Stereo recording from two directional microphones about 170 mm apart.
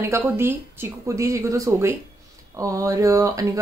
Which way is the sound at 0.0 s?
15° right (ahead or behind).